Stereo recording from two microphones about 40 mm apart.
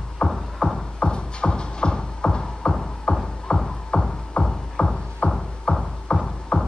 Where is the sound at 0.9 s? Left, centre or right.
Left.